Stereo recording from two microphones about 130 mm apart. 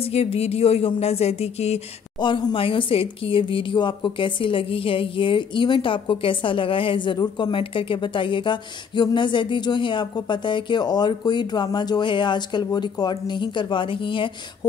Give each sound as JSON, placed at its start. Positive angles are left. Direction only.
{"t": 0.0, "sound": "speech", "side_deg": 50}
{"t": 2.1, "sound": "a woman's voice", "side_deg": 35}